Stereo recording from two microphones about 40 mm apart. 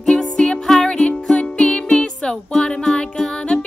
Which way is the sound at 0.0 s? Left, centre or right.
Centre.